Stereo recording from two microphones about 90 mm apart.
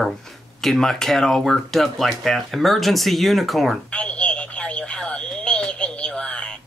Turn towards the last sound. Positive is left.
turn(degrees=10)  # may be behind; listen again after turning